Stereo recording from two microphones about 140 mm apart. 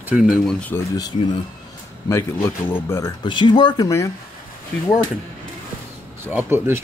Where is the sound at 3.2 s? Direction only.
35° left (ahead or behind).